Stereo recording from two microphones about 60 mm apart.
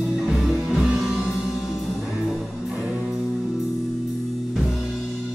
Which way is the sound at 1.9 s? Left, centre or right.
Centre.